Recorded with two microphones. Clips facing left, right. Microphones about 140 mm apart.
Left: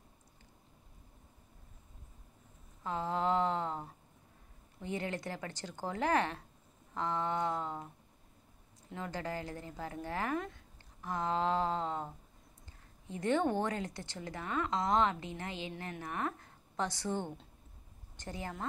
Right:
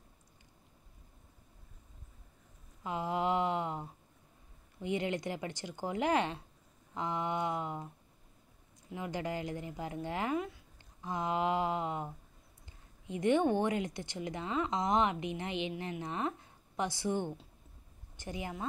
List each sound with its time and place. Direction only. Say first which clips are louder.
2.8 s a sound: even; 15° right (ahead or behind)
4.8 s speech: right 4 dB; 20° right (ahead or behind)
8.9 s speech: right 2 dB; 15° right (ahead or behind)